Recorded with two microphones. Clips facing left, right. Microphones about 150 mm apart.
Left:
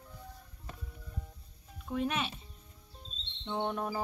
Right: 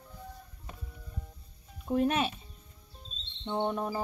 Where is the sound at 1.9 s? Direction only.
45° right (ahead or behind).